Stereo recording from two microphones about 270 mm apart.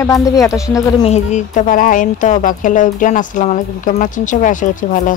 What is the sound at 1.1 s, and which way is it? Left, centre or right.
Speech, left.